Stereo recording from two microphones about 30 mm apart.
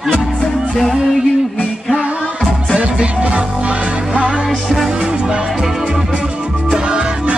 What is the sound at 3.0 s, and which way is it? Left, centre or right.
Music, right.